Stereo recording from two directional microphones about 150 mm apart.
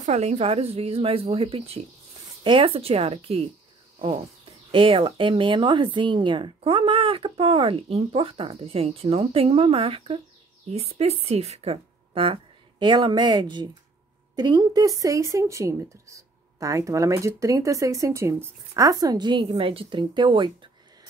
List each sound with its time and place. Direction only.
0.0 s speech: 45° right (ahead or behind)
4.6 s a woman's voice: 35° right (ahead or behind)